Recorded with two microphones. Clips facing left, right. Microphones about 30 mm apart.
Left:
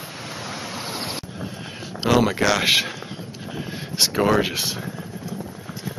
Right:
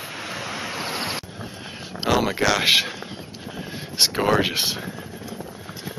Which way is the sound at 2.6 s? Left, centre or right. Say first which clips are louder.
Right 1 dB; centre.